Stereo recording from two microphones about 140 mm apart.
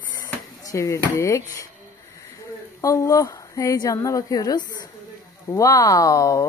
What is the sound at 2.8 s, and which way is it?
A woman's voice, 20° left (ahead or behind).